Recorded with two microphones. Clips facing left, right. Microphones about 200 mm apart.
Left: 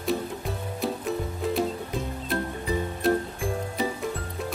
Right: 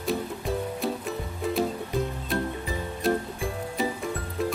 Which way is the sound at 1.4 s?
Centre (ahead or behind).